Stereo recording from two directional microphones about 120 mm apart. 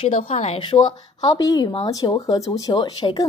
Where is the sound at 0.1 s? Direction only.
70° left (ahead or behind).